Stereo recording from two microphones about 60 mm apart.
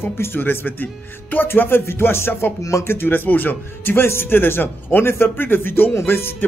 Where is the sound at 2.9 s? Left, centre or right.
Left.